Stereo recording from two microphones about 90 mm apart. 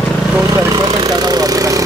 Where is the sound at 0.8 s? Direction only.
50° right (ahead or behind).